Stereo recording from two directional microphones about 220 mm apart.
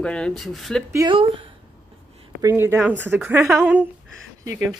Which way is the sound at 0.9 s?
20° right (ahead or behind).